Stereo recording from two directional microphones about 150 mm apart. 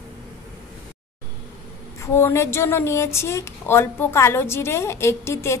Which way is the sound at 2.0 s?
15° left (ahead or behind).